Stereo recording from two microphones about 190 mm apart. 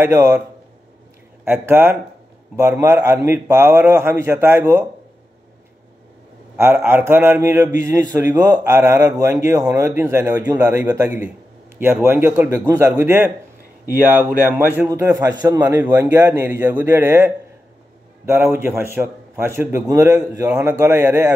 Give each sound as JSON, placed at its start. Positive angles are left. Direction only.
{"t": 0.0, "sound": "a man's voice", "side_deg": -15}
{"t": 1.4, "sound": "a man's voice", "side_deg": -10}
{"t": 6.5, "sound": "a man's voice", "side_deg": -10}
{"t": 14.4, "sound": "a man's voice", "side_deg": -10}